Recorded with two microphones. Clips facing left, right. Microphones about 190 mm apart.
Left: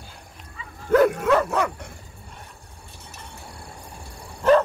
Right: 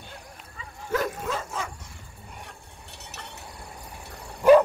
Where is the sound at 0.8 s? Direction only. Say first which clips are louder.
Left 11 dB; 60° left (ahead or behind).